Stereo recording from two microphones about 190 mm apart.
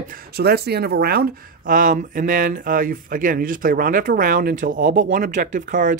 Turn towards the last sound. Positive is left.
turn(degrees=-45)  # may be behind; listen again after turning